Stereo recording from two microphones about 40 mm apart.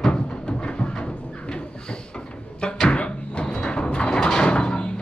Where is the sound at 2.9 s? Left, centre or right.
Left.